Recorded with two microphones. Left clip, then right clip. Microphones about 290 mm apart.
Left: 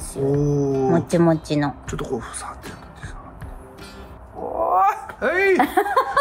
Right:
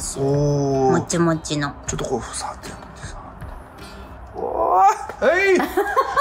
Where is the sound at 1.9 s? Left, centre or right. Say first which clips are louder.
Right 3 dB; centre.